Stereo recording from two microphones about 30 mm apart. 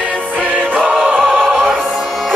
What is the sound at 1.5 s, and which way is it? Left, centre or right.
Music, centre.